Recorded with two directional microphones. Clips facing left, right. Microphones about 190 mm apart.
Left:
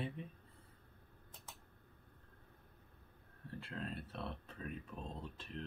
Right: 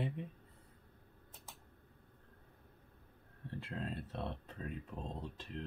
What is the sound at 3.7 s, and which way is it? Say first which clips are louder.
Speech: right 2 dB; 20° right (ahead or behind).